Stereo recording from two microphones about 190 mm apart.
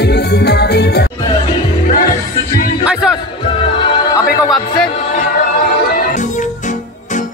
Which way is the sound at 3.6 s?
25° left (ahead or behind).